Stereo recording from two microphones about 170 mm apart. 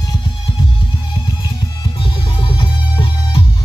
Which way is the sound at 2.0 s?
30° left (ahead or behind).